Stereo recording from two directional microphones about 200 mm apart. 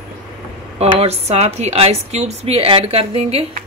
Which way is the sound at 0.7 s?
30° right (ahead or behind).